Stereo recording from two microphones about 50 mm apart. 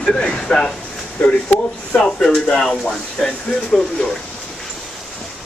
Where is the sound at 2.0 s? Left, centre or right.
Centre.